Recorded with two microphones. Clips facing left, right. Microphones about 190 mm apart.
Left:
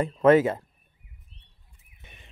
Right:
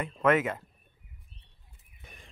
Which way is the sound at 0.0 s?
30° left (ahead or behind).